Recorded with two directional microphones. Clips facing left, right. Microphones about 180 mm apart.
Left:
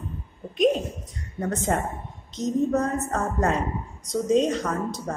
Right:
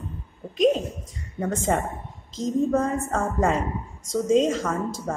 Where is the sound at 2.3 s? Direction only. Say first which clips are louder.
Right 1 dB; 90° right.